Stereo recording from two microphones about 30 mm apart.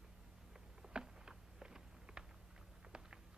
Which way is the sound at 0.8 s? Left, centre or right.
Right.